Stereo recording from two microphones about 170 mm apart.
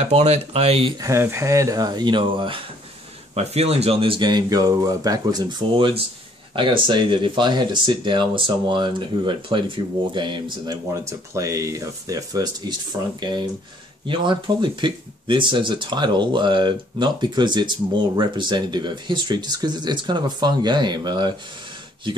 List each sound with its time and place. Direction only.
0.0 s speech: 40° right (ahead or behind)
1.0 s speech: 15° right (ahead or behind)